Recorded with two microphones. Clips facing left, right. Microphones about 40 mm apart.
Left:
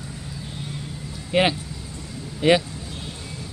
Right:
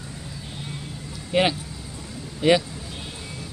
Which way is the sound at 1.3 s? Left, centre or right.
Centre.